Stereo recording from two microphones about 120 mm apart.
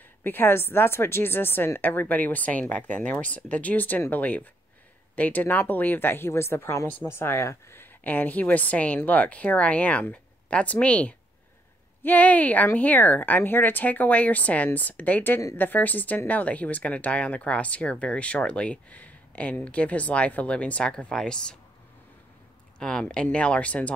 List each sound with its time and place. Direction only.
0.2 s speech: 15° left (ahead or behind)
22.8 s speech: 5° left (ahead or behind)